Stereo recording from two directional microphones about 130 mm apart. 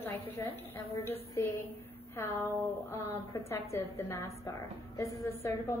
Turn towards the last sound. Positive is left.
turn(degrees=20)  # may be behind; listen again after turning